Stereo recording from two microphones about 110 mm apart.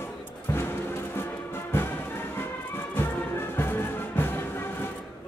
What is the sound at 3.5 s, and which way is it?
Music, 20° left (ahead or behind).